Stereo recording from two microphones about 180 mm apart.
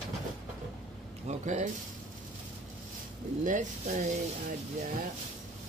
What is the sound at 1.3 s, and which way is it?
Speech, 40° right (ahead or behind).